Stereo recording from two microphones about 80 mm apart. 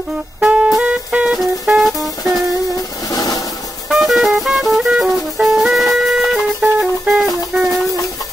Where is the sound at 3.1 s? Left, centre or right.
Left.